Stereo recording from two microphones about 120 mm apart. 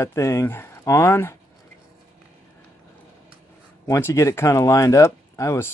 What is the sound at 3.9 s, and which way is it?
Speech, 20° left (ahead or behind).